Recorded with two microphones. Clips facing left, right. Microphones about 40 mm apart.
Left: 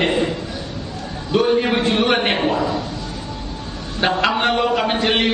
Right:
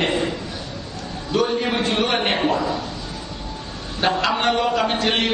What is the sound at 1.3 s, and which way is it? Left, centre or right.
A man's voice, centre.